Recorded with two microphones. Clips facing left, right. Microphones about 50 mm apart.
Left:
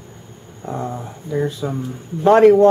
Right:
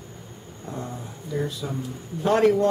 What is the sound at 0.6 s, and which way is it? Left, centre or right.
Speech, left.